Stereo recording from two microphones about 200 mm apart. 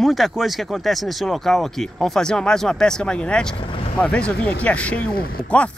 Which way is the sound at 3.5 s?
25° left (ahead or behind).